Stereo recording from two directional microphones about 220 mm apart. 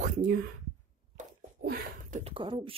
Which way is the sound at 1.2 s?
40° right (ahead or behind).